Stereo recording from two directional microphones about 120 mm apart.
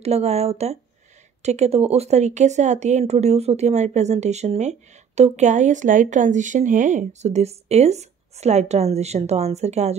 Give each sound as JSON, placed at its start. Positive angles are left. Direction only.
{"t": 0.0, "sound": "speech", "side_deg": -60}